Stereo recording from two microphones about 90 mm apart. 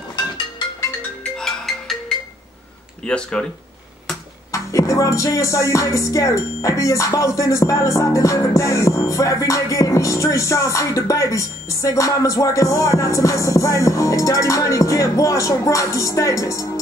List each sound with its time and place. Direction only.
1.3 s music: 5° left (ahead or behind)
3.1 s speech: 10° left (ahead or behind)
4.5 s music: 40° left (ahead or behind)